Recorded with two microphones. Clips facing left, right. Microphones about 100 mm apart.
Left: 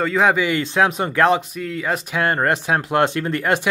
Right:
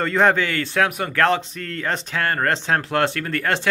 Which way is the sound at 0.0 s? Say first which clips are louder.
Left 1 dB; 5° left (ahead or behind).